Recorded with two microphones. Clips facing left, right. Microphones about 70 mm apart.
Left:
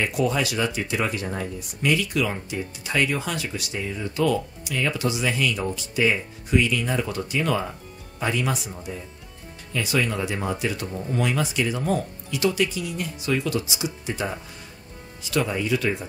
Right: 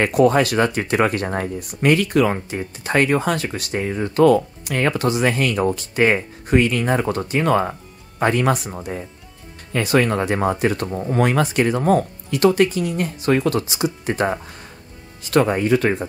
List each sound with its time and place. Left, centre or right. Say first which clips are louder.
0.0 s speech: right 8 dB; right